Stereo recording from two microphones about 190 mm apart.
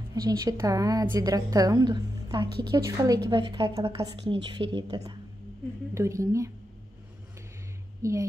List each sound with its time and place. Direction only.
0.1 s a woman's voice: 20° right (ahead or behind)
8.0 s a woman's voice: 15° right (ahead or behind)